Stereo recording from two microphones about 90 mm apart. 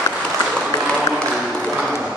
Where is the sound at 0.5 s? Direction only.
5° left (ahead or behind).